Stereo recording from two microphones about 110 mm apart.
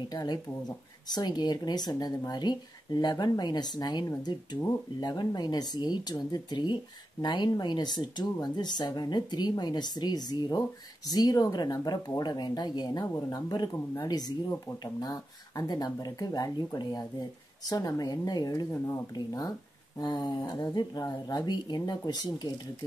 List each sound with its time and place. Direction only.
0.1 s speech: 35° left (ahead or behind)